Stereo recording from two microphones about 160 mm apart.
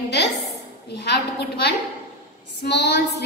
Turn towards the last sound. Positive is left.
turn(degrees=90)